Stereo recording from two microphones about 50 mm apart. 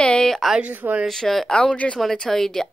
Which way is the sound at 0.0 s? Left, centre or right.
Centre.